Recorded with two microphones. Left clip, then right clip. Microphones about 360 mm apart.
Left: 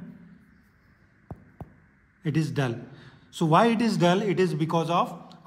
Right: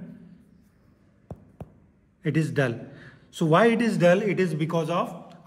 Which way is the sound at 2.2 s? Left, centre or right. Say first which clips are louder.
Right 3 dB; centre.